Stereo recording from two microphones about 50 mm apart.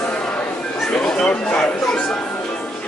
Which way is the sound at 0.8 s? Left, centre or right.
Centre.